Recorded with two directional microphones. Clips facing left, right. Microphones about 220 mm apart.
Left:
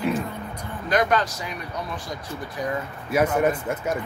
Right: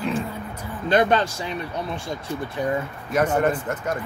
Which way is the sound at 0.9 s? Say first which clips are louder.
Right 3 dB; 30° right (ahead or behind).